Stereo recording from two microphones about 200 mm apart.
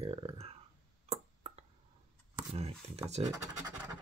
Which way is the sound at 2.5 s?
30° right (ahead or behind).